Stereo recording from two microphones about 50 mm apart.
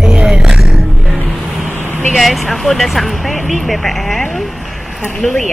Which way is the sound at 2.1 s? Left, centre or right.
Centre.